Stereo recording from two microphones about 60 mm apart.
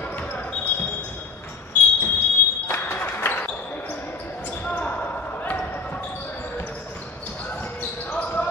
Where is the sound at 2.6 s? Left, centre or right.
Left.